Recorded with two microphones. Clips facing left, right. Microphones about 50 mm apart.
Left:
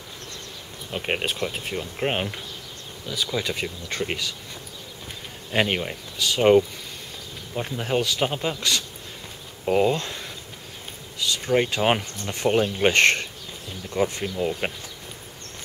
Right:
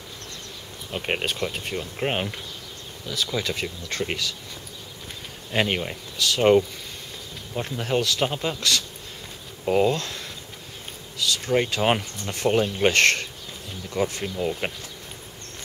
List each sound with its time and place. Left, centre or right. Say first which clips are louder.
0.9 s speech: even; centre
5.5 s speech: left 1 dB; centre
9.9 s speech: left 1 dB; centre
12.9 s speech: left 1 dB; left
14.2 s speech: left 1 dB; centre